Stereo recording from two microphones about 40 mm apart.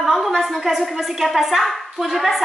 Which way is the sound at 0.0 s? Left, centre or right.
Centre.